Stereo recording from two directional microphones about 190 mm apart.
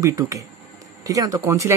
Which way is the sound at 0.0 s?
15° right (ahead or behind).